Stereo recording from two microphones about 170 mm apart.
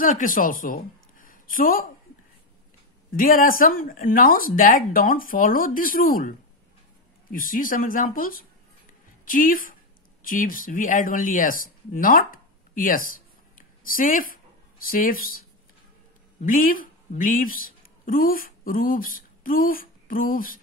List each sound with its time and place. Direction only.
0.0 s a woman's voice: 50° left (ahead or behind)
3.2 s a woman's voice: 55° left (ahead or behind)
13.6 s a sound: 55° left (ahead or behind)
14.9 s speech: 55° left (ahead or behind)